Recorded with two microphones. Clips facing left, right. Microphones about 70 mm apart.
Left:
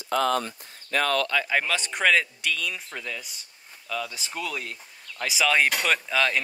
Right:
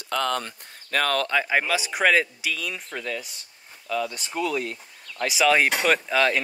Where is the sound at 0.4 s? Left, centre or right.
Right.